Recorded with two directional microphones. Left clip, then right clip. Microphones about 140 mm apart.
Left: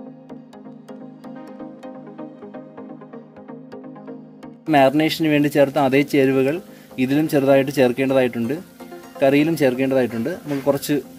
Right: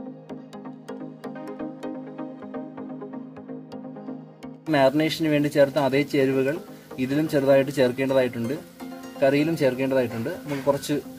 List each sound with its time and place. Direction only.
1.2 s music: centre (ahead or behind)
4.6 s speech: 65° left (ahead or behind)